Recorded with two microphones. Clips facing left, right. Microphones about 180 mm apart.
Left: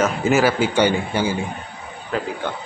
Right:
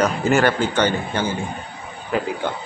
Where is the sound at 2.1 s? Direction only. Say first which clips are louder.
Right 2 dB; 10° right (ahead or behind).